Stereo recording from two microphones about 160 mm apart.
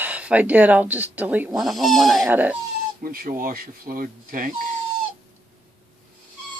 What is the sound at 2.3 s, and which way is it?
Speech, 10° right (ahead or behind).